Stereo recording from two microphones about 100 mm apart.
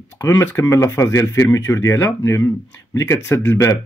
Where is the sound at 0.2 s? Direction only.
25° left (ahead or behind).